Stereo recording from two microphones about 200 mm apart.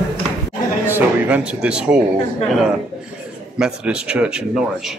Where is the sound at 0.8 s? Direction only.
10° right (ahead or behind).